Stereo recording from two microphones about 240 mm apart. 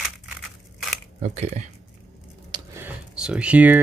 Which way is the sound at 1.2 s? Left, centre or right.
Right.